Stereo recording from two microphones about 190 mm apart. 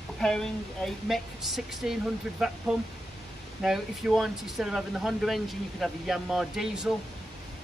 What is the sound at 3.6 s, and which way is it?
Speech, centre (ahead or behind).